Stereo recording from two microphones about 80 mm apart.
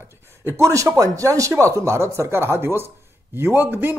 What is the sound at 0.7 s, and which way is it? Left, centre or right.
Speech, right.